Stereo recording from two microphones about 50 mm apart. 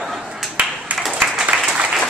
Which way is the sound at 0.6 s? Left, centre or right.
Right.